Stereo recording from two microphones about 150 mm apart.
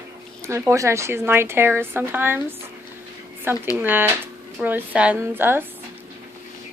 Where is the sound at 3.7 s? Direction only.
15° right (ahead or behind).